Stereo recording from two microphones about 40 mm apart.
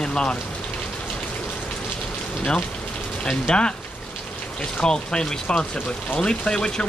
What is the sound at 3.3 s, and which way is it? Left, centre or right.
Speech, left.